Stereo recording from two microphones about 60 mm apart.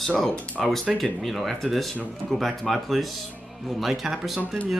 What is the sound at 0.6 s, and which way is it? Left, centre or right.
Speech, centre.